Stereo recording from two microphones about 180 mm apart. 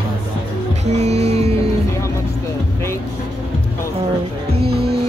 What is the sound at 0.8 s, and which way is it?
Music, 40° right (ahead or behind).